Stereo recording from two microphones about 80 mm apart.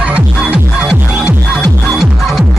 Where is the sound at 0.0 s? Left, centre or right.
Centre.